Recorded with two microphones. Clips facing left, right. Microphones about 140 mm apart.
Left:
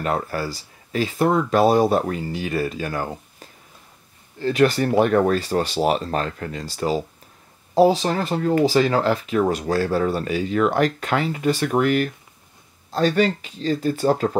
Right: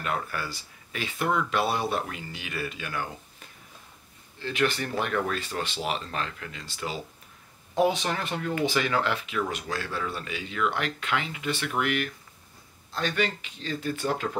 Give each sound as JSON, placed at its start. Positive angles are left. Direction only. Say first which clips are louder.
{"t": 0.0, "sound": "speech", "louder": "left 7 dB", "side_deg": 35}